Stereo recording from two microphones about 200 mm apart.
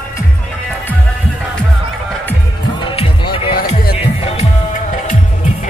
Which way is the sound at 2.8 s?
25° left (ahead or behind).